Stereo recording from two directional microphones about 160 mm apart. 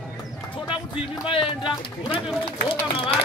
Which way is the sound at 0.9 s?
5° right (ahead or behind).